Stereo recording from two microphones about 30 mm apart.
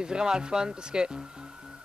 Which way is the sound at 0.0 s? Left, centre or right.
Right.